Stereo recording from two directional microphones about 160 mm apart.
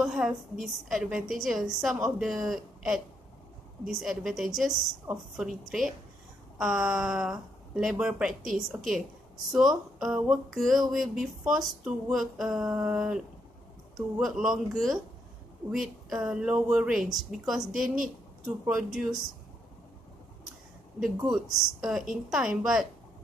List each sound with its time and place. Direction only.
0.0 s speech: centre (ahead or behind)
17.8 s a woman's voice: 55° right (ahead or behind)
18.4 s speech: 5° right (ahead or behind)
21.3 s speech: centre (ahead or behind)